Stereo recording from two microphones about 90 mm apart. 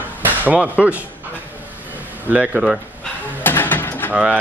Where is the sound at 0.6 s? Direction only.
15° right (ahead or behind).